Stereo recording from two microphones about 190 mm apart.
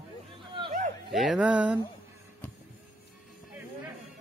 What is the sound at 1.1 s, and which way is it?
Speech, centre (ahead or behind).